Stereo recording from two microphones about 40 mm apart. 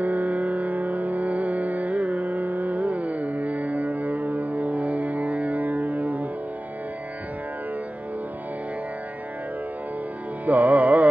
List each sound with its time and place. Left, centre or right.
0.0 s music: right
10.4 s music: right